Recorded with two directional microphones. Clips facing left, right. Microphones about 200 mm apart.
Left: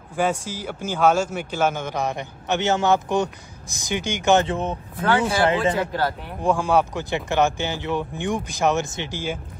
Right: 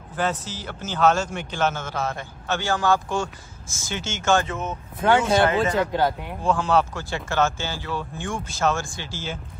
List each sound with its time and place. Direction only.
0.1 s a man's voice: 10° left (ahead or behind)
4.5 s speech: 30° left (ahead or behind)
5.9 s speech: 15° right (ahead or behind)
6.4 s a man's voice: 15° left (ahead or behind)